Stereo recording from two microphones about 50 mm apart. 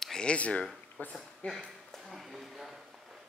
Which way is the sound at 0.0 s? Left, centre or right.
Centre.